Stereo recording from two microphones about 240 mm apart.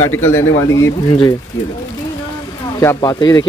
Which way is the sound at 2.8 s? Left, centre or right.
Centre.